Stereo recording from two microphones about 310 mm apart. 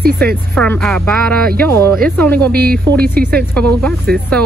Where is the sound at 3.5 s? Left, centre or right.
Centre.